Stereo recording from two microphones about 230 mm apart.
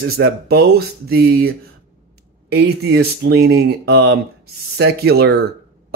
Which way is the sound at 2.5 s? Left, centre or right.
Right.